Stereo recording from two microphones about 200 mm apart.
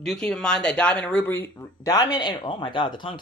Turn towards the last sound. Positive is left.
turn(degrees=25)  # may be behind; listen again after turning